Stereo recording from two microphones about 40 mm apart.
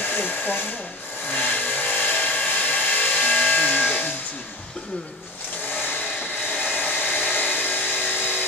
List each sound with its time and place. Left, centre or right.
0.0 s hair dryer: left
1.5 s vehicle: left
6.8 s hair dryer: left